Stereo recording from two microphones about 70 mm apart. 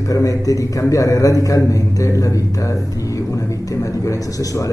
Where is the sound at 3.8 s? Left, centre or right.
Left.